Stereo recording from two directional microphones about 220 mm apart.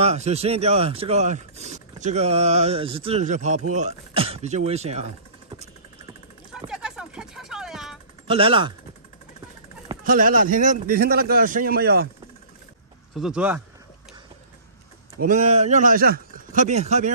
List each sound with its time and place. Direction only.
0.0 s speech: 30° right (ahead or behind)
6.7 s a sound: 5° right (ahead or behind)
8.3 s speech: 25° right (ahead or behind)
10.0 s a man's voice: 40° right (ahead or behind)
13.1 s speech: 5° right (ahead or behind)
15.1 s a man's voice: 35° right (ahead or behind)